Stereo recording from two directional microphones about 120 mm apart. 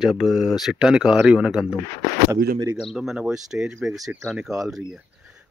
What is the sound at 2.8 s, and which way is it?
Speech, centre (ahead or behind).